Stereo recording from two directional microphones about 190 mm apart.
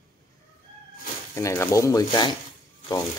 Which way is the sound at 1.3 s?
15° left (ahead or behind).